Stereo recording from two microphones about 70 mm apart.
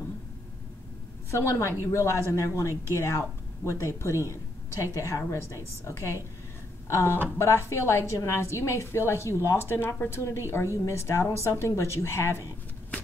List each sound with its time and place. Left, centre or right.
1.3 s a woman's voice: left